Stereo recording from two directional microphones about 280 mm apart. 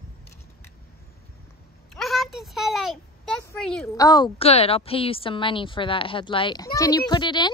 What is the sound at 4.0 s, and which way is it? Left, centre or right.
A woman's voice, centre.